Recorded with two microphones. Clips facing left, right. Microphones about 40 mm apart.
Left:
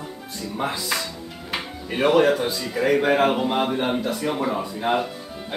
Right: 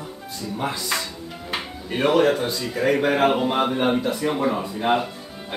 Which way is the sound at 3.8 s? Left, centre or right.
Right.